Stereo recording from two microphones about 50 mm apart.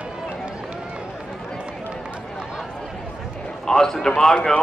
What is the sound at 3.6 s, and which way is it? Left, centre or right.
Speech, centre.